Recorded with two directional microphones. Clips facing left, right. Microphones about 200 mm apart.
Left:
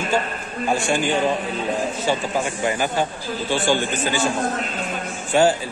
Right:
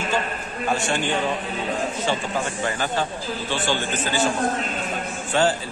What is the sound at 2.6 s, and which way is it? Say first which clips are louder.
A man's voice: left 4 dB; 15° left (ahead or behind).